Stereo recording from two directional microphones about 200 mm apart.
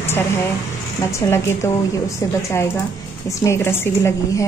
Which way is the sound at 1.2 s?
15° left (ahead or behind).